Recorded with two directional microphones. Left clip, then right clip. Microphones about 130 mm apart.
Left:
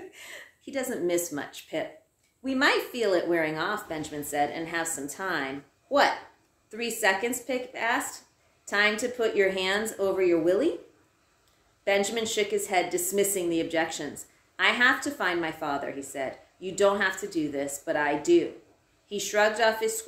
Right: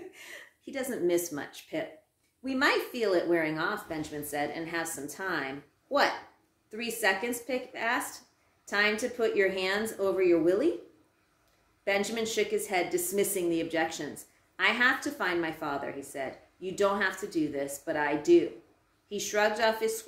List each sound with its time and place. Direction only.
0.1 s a woman's voice: 15° left (ahead or behind)
11.8 s a woman's voice: 15° left (ahead or behind)